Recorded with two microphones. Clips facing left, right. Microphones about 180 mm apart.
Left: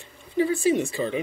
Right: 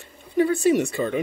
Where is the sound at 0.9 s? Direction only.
50° right (ahead or behind).